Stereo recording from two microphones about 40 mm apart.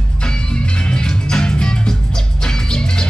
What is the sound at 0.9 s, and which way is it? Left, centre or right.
Music, centre.